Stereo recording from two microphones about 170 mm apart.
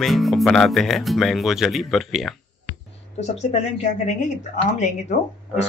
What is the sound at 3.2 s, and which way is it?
Speech, 40° left (ahead or behind).